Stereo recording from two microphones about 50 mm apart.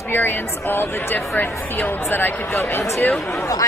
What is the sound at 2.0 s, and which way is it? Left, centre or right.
Speech, left.